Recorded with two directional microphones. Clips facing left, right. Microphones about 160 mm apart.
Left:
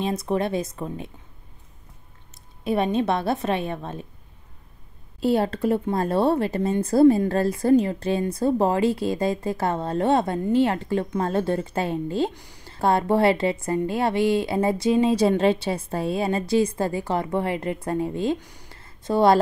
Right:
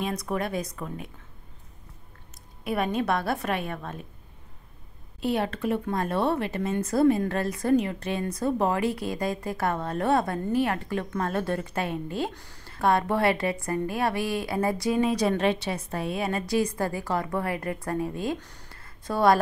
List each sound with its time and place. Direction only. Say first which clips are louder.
0.0 s speech: left 5 dB; 25° left (ahead or behind)
2.6 s speech: left 5 dB; 25° left (ahead or behind)
5.2 s speech: left 5 dB; 35° left (ahead or behind)
12.4 s speech: left 2 dB; 15° left (ahead or behind)
12.6 s speech: left 3 dB; 30° left (ahead or behind)
18.4 s a sound: left 2 dB; 10° left (ahead or behind)
18.7 s a sound: left 7 dB; 25° left (ahead or behind)